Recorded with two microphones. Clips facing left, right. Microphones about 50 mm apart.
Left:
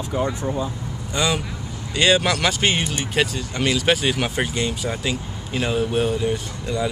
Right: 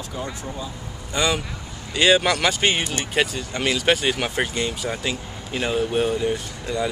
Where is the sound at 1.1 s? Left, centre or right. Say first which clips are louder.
Even; centre.